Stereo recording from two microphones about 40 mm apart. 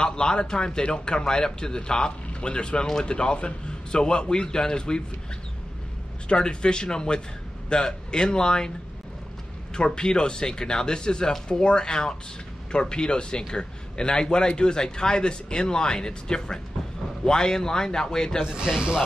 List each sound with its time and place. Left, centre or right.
0.0 s a man's voice: centre
6.2 s a man's voice: left
9.8 s a man's voice: left
18.5 s speech: centre